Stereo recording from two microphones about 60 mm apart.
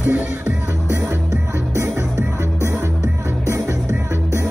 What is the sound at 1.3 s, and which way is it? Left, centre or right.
Music, right.